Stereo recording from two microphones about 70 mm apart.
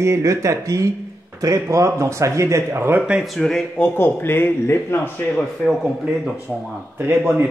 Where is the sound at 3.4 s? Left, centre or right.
Centre.